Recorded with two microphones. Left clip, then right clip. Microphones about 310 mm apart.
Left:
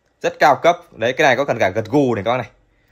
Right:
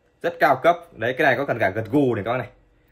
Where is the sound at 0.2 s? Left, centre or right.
Left.